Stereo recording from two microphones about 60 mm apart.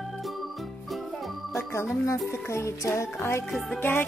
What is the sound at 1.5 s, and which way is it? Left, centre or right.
Music, left.